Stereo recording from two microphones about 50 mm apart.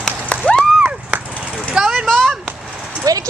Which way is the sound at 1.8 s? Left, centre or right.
Centre.